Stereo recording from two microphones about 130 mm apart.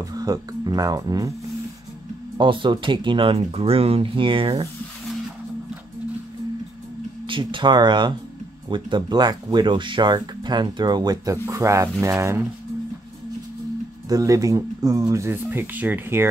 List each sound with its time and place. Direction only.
0.0 s speech: 30° right (ahead or behind)
2.3 s speech: 40° right (ahead or behind)
7.2 s speech: 40° right (ahead or behind); by 12.4 s 20° right (ahead or behind)
14.0 s speech: 25° right (ahead or behind)